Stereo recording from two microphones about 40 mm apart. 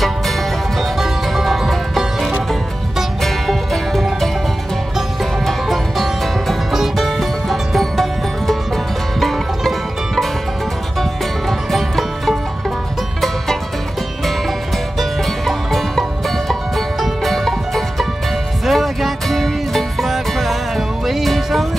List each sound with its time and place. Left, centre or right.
0.9 s music: centre
3.2 s music: centre
5.4 s music: centre
15.0 s music: centre